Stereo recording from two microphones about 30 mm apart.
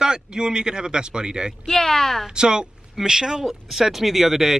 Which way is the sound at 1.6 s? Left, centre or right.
Centre.